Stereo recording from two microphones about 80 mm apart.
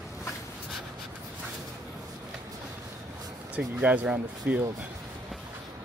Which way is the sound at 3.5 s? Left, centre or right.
Centre.